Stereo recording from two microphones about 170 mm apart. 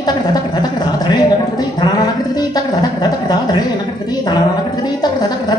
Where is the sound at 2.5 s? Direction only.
25° left (ahead or behind).